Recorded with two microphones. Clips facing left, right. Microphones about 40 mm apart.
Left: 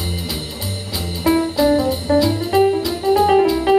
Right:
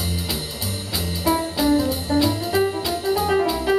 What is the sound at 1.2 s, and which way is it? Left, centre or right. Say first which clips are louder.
Music: left 5 dB; left.